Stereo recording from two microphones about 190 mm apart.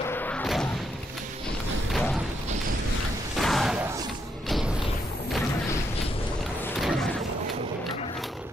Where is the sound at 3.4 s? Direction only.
Centre (ahead or behind).